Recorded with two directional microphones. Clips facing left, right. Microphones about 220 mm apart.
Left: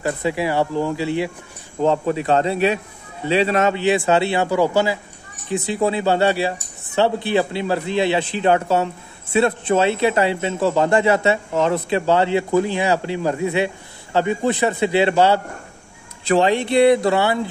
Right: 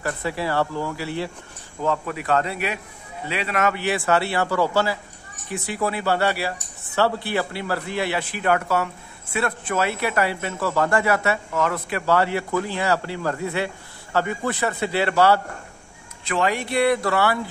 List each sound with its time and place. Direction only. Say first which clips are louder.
0.0 s a man's voice: left 5 dB; 20° left (ahead or behind)